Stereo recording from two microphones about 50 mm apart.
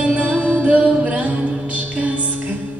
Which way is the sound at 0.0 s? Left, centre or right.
Right.